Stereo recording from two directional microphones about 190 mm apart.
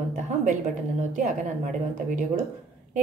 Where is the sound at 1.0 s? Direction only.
40° right (ahead or behind).